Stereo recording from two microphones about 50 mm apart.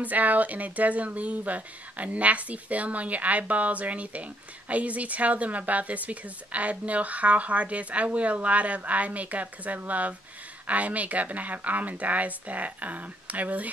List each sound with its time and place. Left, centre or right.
0.0 s speech: right